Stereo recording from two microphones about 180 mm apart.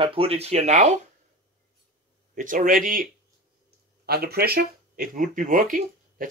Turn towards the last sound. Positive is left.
turn(degrees=-50)  # may be behind; listen again after turning